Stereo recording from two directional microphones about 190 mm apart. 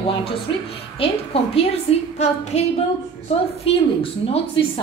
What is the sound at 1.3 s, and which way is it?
A woman's voice, 30° left (ahead or behind).